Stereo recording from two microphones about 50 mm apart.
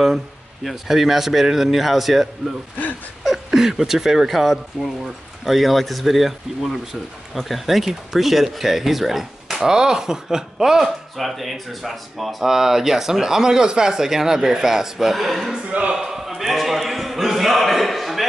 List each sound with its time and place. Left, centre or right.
0.7 s speech: centre
3.3 s speech: centre
15.7 s speech: right
16.0 s speech: centre